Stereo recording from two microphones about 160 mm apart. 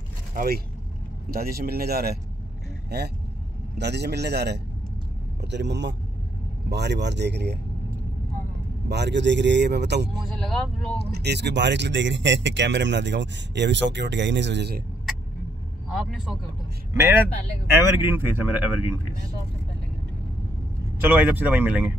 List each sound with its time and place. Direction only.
0.3 s speech: 60° right (ahead or behind); by 2.1 s 80° right
2.9 s speech: 90° right
8.8 s speech: 90° right
10.3 s speech: centre (ahead or behind)
11.1 s speech: 90° right
15.9 s speech: centre (ahead or behind)
16.9 s speech: 15° right (ahead or behind)
21.0 s speech: 10° right (ahead or behind)